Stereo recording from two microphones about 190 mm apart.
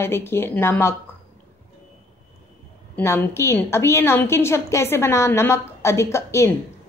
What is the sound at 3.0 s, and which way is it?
A woman's voice, 15° left (ahead or behind).